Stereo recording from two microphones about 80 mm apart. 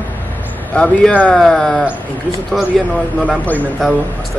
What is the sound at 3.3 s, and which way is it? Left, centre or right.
Speech, centre.